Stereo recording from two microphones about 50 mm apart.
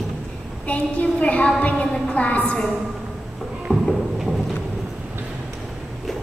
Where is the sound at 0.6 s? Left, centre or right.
Left.